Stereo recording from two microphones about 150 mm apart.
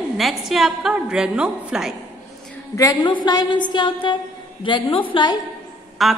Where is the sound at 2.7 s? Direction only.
25° left (ahead or behind).